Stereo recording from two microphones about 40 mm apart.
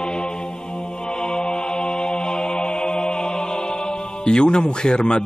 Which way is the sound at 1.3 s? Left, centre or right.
Left.